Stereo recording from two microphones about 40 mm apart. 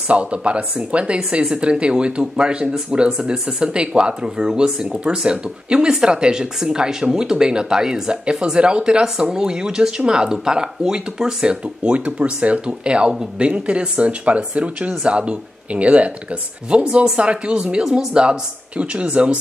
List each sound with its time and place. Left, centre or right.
0.1 s speech: right